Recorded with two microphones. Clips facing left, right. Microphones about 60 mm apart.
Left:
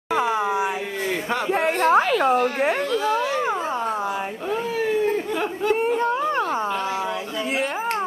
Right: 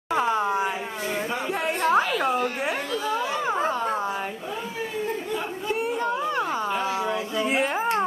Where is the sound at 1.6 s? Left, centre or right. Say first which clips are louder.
Left 5 dB; left.